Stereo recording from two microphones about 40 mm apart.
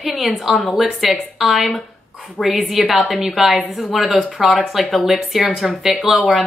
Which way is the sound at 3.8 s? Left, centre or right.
Centre.